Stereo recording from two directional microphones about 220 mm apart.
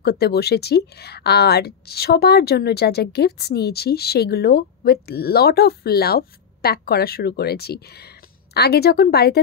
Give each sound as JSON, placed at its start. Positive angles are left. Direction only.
{"t": 0.0, "sound": "speech", "side_deg": 45}